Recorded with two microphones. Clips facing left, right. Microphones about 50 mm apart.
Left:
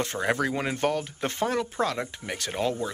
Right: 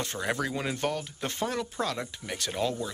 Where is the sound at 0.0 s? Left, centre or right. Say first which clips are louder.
Left 4 dB; left.